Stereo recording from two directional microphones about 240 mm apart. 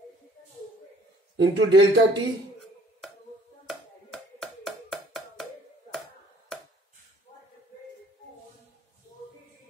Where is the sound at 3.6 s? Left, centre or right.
Centre.